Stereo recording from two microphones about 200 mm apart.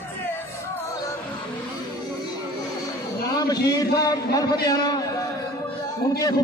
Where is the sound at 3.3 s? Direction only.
20° left (ahead or behind).